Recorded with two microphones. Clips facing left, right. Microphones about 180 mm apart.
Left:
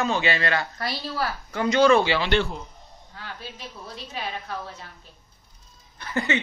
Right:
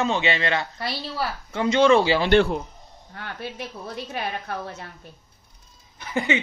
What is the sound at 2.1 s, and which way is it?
Speech, 45° right (ahead or behind).